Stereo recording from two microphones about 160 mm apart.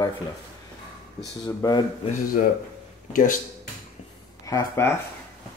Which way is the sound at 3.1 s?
55° left (ahead or behind).